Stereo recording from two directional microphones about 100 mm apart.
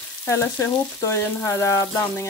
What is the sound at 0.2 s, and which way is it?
Frying, 30° left (ahead or behind).